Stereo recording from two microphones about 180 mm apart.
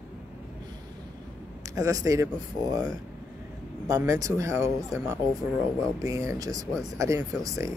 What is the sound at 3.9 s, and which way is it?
Speech, 15° right (ahead or behind).